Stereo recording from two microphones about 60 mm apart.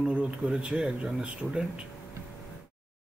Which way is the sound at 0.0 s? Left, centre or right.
Centre.